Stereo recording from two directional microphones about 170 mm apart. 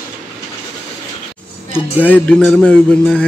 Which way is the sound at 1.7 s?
10° left (ahead or behind).